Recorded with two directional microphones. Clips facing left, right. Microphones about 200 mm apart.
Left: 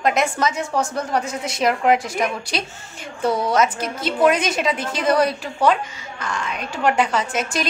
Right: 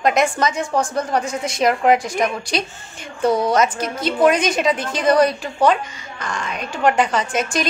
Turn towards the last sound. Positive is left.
turn(degrees=5)  # may be behind; listen again after turning